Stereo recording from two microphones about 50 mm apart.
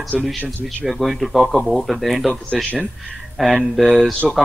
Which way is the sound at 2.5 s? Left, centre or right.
Right.